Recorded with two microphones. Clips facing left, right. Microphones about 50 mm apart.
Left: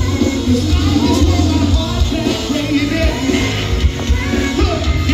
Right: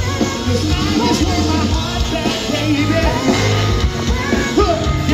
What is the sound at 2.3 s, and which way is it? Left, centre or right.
Music, right.